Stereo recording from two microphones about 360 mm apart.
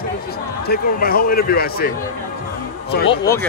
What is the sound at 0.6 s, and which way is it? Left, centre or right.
A man's voice, left.